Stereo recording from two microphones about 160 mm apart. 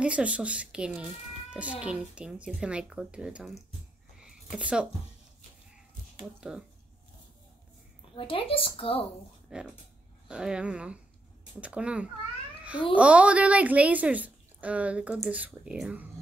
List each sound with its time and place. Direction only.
0.0 s speech: 10° right (ahead or behind)
4.2 s a sound: 5° right (ahead or behind)
6.1 s speech: 5° right (ahead or behind)
8.1 s a woman's voice: 35° left (ahead or behind)
9.5 s speech: 5° right (ahead or behind)